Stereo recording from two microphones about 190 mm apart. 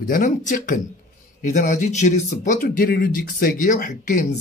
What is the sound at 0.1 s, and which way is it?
Speech, 45° left (ahead or behind).